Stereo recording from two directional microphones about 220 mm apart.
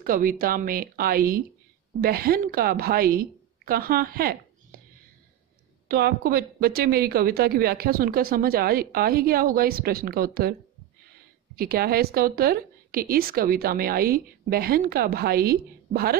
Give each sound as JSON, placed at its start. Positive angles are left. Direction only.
{"t": 0.0, "sound": "speech", "side_deg": -40}
{"t": 5.9, "sound": "speech", "side_deg": -45}
{"t": 11.5, "sound": "speech", "side_deg": -45}